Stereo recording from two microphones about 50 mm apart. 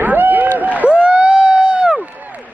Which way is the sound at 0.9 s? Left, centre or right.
Right.